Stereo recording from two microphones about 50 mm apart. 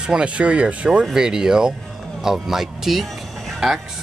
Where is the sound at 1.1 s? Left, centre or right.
Centre.